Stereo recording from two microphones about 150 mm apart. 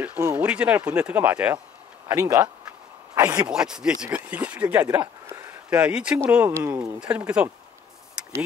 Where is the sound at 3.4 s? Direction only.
5° right (ahead or behind).